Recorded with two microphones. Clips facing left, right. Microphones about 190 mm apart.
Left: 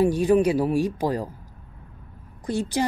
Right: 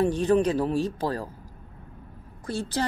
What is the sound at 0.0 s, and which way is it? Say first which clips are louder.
Speech: left 3 dB; 10° left (ahead or behind).